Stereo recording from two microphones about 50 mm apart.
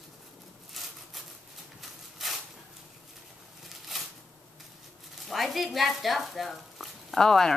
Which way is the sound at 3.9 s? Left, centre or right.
Centre.